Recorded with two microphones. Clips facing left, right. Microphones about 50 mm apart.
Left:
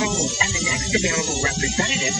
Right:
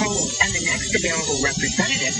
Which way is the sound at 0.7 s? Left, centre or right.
Centre.